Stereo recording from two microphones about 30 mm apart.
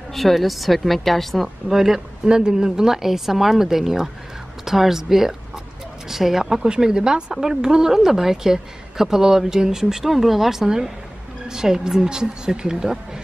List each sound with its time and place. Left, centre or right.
0.1 s a woman's voice: centre
1.7 s a woman's voice: centre
2.2 s speech: right
3.0 s a woman's voice: centre
6.7 s a woman's voice: right